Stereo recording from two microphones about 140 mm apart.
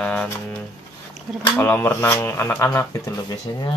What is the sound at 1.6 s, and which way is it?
Speech, 15° left (ahead or behind).